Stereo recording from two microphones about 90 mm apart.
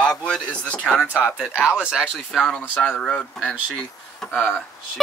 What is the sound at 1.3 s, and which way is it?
Speech, 10° right (ahead or behind).